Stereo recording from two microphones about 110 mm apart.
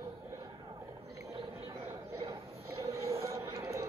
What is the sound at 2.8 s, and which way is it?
Train, 25° right (ahead or behind).